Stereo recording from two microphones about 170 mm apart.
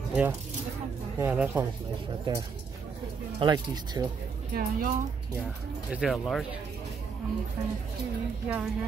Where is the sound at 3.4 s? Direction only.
25° right (ahead or behind).